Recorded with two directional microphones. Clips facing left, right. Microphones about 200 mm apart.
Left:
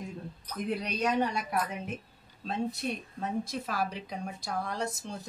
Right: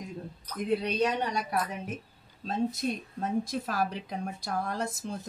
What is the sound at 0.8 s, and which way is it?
A woman's voice, 35° right (ahead or behind).